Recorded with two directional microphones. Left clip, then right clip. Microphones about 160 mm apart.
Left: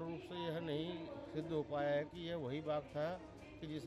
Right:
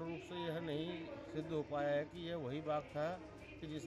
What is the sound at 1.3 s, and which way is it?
Speech, centre (ahead or behind).